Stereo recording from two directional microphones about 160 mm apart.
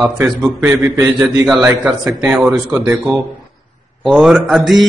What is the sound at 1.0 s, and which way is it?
A man's voice, 5° right (ahead or behind).